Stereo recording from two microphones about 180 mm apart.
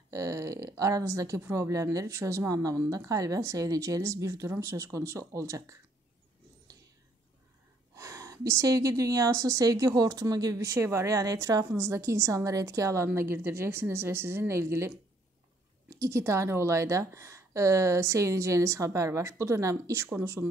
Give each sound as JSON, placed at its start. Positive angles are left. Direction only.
{"t": 0.1, "sound": "a woman's voice", "side_deg": -15}
{"t": 7.9, "sound": "a woman's voice", "side_deg": -15}
{"t": 16.0, "sound": "a woman's voice", "side_deg": -15}